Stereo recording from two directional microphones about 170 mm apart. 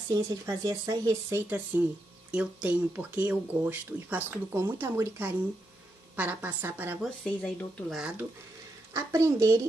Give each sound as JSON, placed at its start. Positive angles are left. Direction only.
{"t": 0.1, "sound": "speech", "side_deg": -20}
{"t": 2.3, "sound": "speech", "side_deg": -5}
{"t": 7.2, "sound": "speech", "side_deg": 5}
{"t": 8.9, "sound": "speech", "side_deg": -20}